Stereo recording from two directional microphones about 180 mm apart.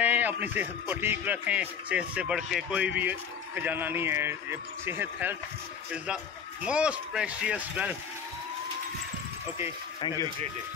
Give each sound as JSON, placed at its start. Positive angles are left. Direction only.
{"t": 0.0, "sound": "speech", "side_deg": -10}
{"t": 6.6, "sound": "speech", "side_deg": -5}
{"t": 9.9, "sound": "speech", "side_deg": 25}